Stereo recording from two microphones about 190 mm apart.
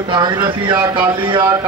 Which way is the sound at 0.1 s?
25° right (ahead or behind).